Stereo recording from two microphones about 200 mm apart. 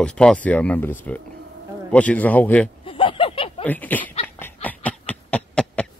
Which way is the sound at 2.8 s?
25° left (ahead or behind).